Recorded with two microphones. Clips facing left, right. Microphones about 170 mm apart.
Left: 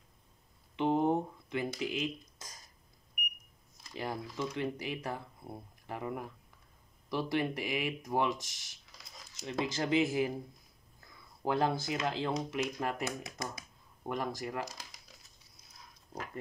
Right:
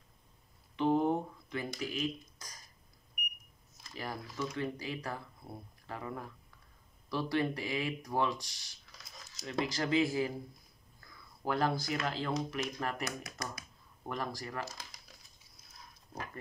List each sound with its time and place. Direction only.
0.7 s a sound: 20° left (ahead or behind)
1.8 s speech: 20° left (ahead or behind)
3.9 s speech: 20° left (ahead or behind)
11.4 s speech: 20° left (ahead or behind)